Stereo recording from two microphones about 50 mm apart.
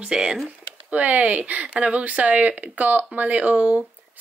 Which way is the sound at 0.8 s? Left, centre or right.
Right.